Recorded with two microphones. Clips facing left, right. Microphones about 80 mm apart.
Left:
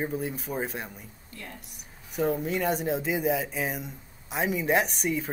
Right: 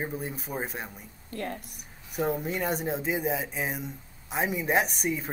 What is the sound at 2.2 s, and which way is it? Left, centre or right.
Speech, centre.